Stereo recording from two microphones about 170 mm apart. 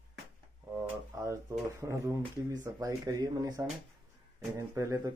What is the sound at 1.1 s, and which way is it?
Speech, 20° right (ahead or behind).